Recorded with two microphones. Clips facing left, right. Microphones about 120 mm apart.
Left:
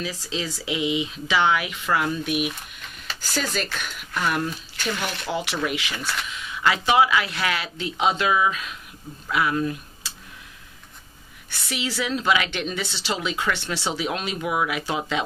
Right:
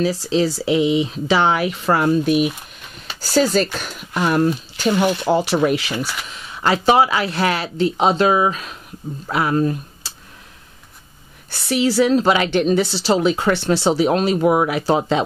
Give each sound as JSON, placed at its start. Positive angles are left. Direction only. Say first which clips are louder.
{"t": 0.0, "sound": "a woman's voice", "louder": "right 12 dB", "side_deg": -35}
{"t": 11.5, "sound": "a woman's voice", "louder": "right 12 dB", "side_deg": -35}